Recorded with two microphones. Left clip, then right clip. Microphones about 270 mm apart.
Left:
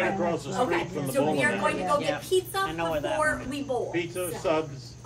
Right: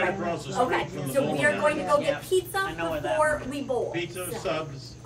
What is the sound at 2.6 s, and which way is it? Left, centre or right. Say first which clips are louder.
Speech: left 1 dB; left.